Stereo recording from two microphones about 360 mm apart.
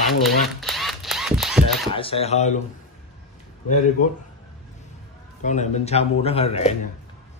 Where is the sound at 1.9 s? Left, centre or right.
Centre.